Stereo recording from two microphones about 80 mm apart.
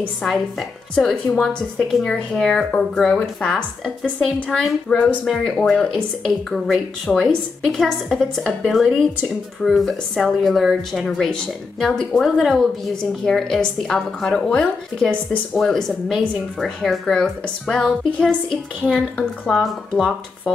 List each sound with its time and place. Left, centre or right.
0.2 s a woman's voice: centre
4.8 s a woman's voice: centre
12.2 s a woman's voice: centre